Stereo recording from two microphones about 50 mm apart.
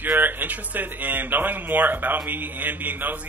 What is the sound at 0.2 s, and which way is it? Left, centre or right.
Speech, right.